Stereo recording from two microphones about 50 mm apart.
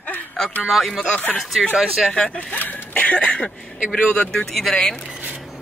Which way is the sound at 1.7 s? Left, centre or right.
Centre.